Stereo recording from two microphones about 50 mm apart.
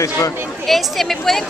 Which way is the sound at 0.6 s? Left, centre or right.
Centre.